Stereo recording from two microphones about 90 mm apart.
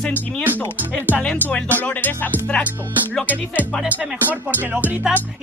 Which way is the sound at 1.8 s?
20° left (ahead or behind).